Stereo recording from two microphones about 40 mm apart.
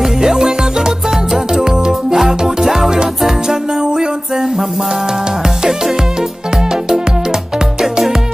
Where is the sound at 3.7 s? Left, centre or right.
Centre.